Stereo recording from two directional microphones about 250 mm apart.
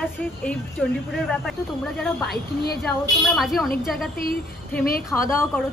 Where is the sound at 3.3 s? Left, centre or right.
Centre.